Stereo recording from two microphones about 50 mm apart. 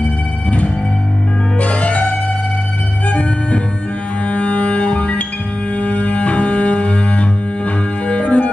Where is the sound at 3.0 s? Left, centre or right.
Left.